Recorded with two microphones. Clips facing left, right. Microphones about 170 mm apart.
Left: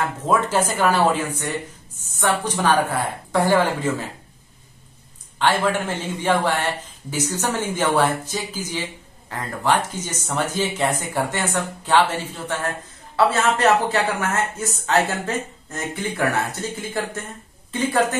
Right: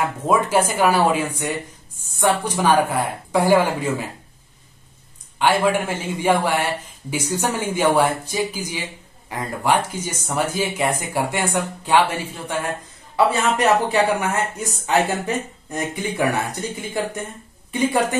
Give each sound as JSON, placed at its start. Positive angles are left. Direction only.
{"t": 0.0, "sound": "speech", "side_deg": -10}
{"t": 5.4, "sound": "a woman's voice", "side_deg": -10}